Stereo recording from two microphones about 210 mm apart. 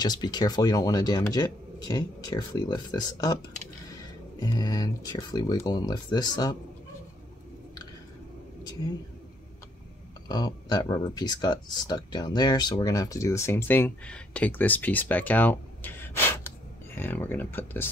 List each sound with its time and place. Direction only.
0.0 s speech: 20° left (ahead or behind)
4.4 s speech: 20° left (ahead or behind)
10.2 s speech: 20° left (ahead or behind)